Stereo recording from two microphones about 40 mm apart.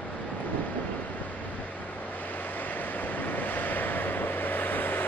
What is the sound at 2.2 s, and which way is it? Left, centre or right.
Vehicle, left.